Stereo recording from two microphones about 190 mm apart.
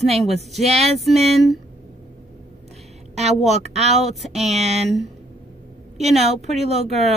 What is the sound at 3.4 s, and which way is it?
Speech, 35° right (ahead or behind).